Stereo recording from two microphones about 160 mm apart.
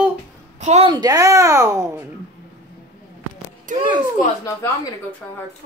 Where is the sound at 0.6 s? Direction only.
45° right (ahead or behind).